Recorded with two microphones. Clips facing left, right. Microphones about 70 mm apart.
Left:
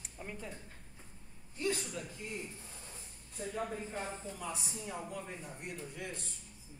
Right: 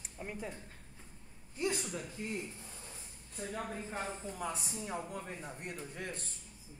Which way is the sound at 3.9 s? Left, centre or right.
Right.